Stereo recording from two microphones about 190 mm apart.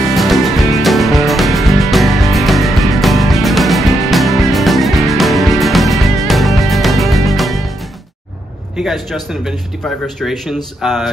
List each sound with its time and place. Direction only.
0.1 s music: centre (ahead or behind)
8.7 s speech: centre (ahead or behind)